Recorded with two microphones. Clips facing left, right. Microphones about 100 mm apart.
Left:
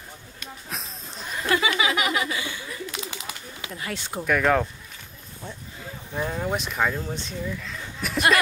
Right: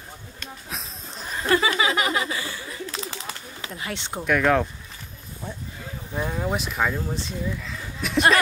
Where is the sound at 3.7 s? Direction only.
25° right (ahead or behind).